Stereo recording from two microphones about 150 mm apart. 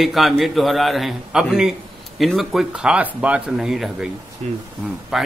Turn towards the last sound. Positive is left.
turn(degrees=-5)  # may be behind; listen again after turning